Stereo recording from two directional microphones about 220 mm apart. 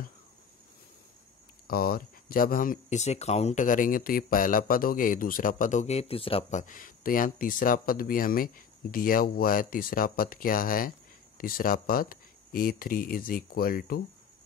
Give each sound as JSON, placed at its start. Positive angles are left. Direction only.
{"t": 1.7, "sound": "speech", "side_deg": 45}